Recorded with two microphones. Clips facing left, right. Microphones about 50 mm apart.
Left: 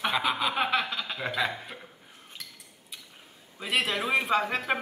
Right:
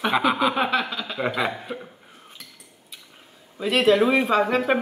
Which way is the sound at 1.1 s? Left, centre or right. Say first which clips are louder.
Right 6 dB; right.